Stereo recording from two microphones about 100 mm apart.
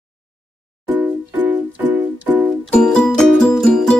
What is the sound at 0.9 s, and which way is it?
Music, 20° right (ahead or behind).